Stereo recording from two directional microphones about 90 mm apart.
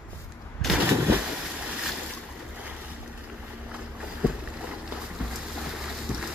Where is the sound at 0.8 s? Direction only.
25° right (ahead or behind).